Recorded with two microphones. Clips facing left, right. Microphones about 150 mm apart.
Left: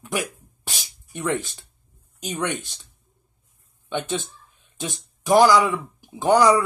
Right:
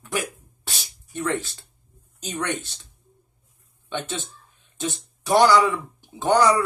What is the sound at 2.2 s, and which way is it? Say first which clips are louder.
Speech: left 1 dB; 15° left (ahead or behind).